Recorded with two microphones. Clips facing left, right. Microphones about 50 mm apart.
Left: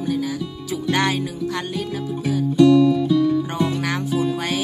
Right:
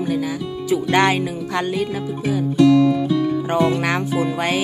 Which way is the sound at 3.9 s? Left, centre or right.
Right.